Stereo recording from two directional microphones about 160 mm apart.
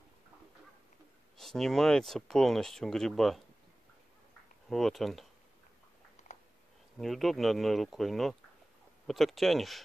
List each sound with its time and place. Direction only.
1.4 s speech: centre (ahead or behind)
4.6 s speech: centre (ahead or behind)
6.3 s a sound: 45° left (ahead or behind)
7.0 s speech: centre (ahead or behind)